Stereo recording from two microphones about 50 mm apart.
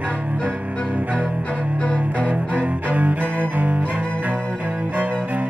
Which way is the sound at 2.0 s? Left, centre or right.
Right.